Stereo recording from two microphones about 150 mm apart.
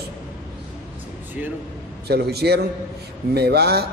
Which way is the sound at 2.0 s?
90° right.